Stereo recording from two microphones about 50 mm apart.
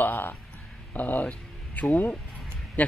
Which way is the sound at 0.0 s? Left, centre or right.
Left.